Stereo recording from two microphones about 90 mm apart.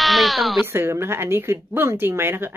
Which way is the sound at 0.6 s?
25° right (ahead or behind).